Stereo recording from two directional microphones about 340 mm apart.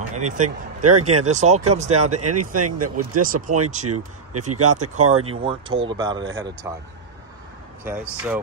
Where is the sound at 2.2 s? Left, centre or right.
Right.